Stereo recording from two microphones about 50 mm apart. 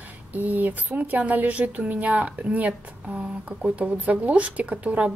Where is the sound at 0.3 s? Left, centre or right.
Right.